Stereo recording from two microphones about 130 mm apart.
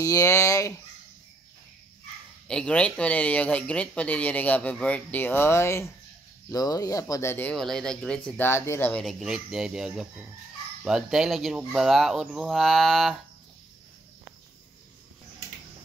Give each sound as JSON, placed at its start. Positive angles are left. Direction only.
{"t": 0.0, "sound": "speech", "side_deg": 25}
{"t": 2.4, "sound": "speech", "side_deg": 10}
{"t": 7.5, "sound": "speech", "side_deg": 5}
{"t": 9.0, "sound": "speech", "side_deg": -5}